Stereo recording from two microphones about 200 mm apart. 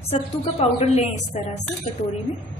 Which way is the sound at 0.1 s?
30° left (ahead or behind).